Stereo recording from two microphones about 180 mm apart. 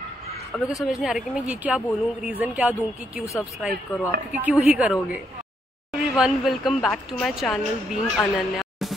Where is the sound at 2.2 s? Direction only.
5° right (ahead or behind).